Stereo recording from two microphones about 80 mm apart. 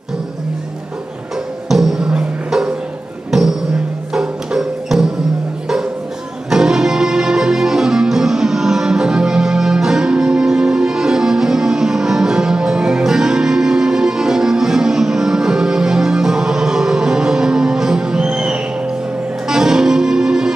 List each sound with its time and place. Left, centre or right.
1.7 s music: centre
6.5 s music: centre